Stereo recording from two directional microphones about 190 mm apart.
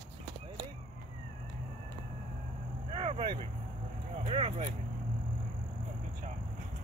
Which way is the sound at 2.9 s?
30° right (ahead or behind).